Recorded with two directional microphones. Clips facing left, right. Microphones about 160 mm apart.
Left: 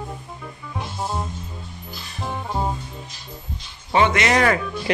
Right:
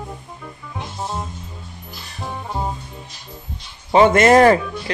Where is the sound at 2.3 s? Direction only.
Centre (ahead or behind).